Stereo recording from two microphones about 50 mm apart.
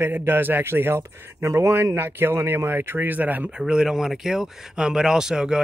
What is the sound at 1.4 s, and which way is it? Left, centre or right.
Speech, right.